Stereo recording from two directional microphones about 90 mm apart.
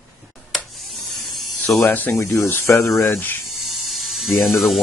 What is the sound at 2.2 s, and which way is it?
Speech, 30° left (ahead or behind).